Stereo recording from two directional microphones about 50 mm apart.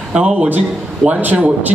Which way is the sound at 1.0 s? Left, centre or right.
Right.